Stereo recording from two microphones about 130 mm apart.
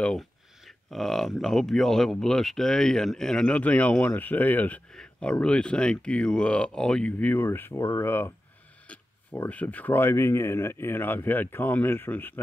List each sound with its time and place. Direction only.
0.0 s speech: 5° left (ahead or behind)